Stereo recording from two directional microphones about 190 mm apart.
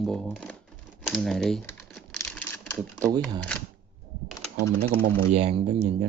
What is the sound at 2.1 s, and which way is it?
Typing, 10° left (ahead or behind).